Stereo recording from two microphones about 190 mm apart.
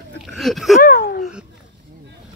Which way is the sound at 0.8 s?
50° left (ahead or behind).